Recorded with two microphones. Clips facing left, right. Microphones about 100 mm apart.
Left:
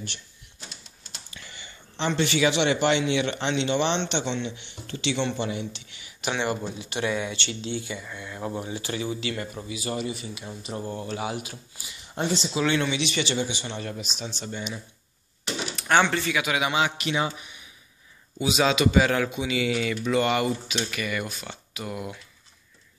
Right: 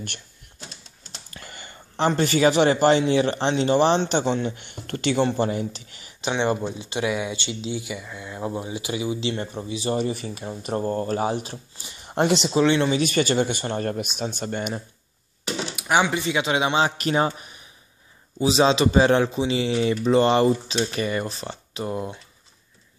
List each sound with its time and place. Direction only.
1.3 s speech: 45° right (ahead or behind)
6.2 s speech: 20° right (ahead or behind)
10.0 s a man's voice: 45° right (ahead or behind)
12.1 s speech: 65° right (ahead or behind)
12.6 s speech: 25° right (ahead or behind)
12.9 s a man's voice: 45° right (ahead or behind)
15.7 s speech: 10° right (ahead or behind); by 16.9 s 30° right (ahead or behind)
17.0 s a man's voice: 40° right (ahead or behind)